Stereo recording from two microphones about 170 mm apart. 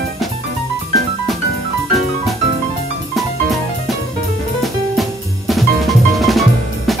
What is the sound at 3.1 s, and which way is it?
Music, centre (ahead or behind).